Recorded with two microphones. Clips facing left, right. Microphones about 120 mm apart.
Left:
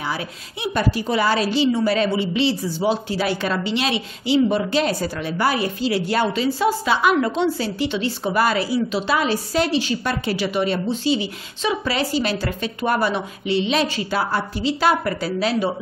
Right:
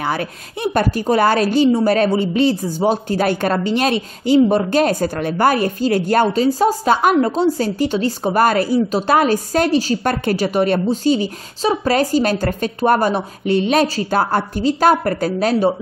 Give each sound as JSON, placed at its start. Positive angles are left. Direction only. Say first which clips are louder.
{"t": 0.0, "sound": "a woman's voice", "louder": "right 5 dB", "side_deg": -55}